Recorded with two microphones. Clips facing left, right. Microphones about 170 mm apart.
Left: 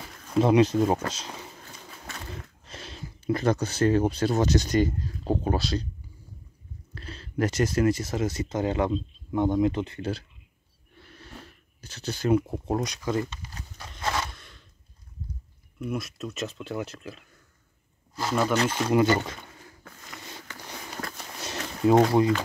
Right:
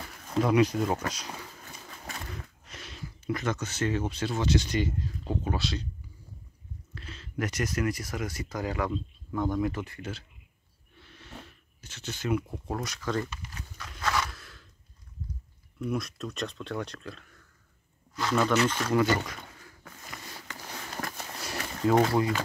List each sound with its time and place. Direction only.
0.4 s speech: 25° left (ahead or behind)
2.6 s speech: 30° left (ahead or behind)
7.0 s speech: 35° left (ahead or behind); by 13.2 s 15° left (ahead or behind)
13.3 s horse: 30° left (ahead or behind)
14.3 s a sound: centre (ahead or behind)
15.8 s speech: centre (ahead or behind)
18.3 s speech: 10° left (ahead or behind)
18.8 s speech: 20° left (ahead or behind)
21.4 s a sound: 20° left (ahead or behind)